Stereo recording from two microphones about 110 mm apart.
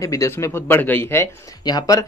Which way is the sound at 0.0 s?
30° left (ahead or behind).